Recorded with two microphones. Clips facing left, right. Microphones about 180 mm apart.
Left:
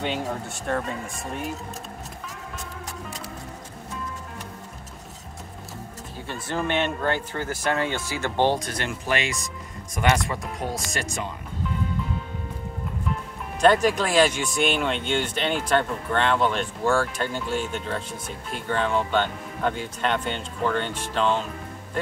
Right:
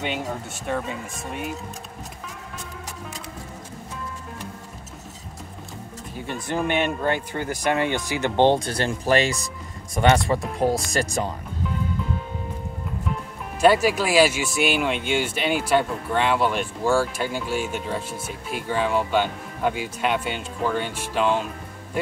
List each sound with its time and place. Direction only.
0.0 s speech: 5° right (ahead or behind)
6.2 s speech: 15° right (ahead or behind); by 11.3 s 35° right (ahead or behind)
13.6 s speech: 5° right (ahead or behind)